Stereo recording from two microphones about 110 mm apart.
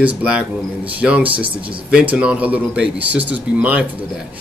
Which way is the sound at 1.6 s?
50° right (ahead or behind).